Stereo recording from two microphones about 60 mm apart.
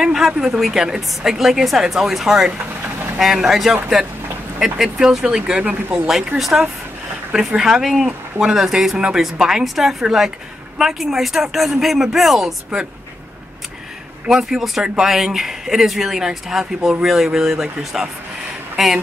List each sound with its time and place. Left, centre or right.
0.0 s a sound: centre
0.6 s a man's voice: centre
5.7 s speech: right
6.0 s a man's voice: centre
14.2 s a man's voice: centre